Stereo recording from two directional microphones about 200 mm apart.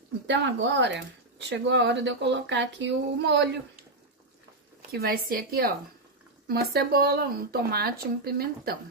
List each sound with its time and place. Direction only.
0.3 s speech: 65° right (ahead or behind)
4.9 s speech: 50° right (ahead or behind)